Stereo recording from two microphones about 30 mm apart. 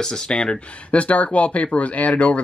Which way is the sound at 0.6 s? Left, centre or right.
Left.